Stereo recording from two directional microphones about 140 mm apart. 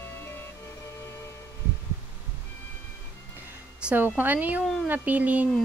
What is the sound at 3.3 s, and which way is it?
Music, 15° right (ahead or behind).